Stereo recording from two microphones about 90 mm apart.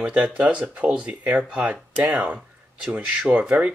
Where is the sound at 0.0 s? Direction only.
15° right (ahead or behind).